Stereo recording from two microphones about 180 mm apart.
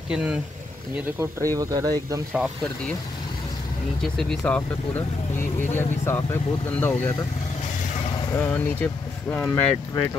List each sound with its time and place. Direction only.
0.1 s speech: 5° right (ahead or behind)
1.2 s speech: 20° right (ahead or behind)
4.0 s speech: centre (ahead or behind)
8.3 s speech: 10° left (ahead or behind)